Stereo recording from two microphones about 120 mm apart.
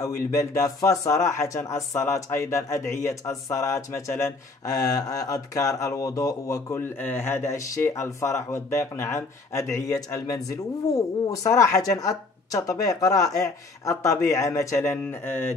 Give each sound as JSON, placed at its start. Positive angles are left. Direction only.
{"t": 0.0, "sound": "speech", "side_deg": 25}